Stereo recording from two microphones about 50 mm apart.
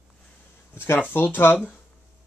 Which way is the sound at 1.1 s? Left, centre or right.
Left.